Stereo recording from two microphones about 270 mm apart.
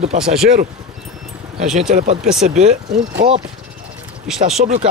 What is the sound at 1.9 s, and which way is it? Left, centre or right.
Speech, right.